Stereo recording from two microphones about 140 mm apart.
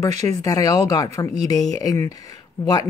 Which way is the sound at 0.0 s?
25° left (ahead or behind).